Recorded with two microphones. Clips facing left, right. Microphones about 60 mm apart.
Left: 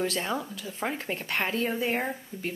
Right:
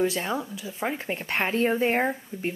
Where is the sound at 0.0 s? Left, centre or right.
Centre.